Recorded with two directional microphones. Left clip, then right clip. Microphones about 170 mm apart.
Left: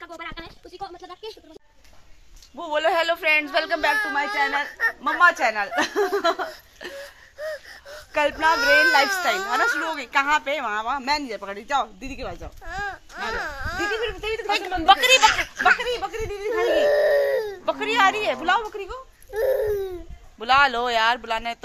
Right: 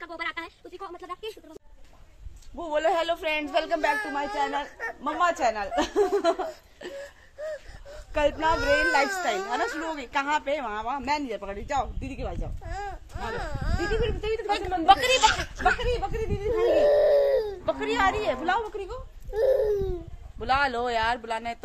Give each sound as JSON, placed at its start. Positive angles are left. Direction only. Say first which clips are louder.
{"t": 0.0, "sound": "a sound", "louder": "right 3 dB", "side_deg": 5}
{"t": 2.5, "sound": "speech", "louder": "left 3 dB", "side_deg": 10}
{"t": 9.2, "sound": "speech", "louder": "left 6 dB", "side_deg": 10}
{"t": 14.9, "sound": "speech", "louder": "left 4 dB", "side_deg": 25}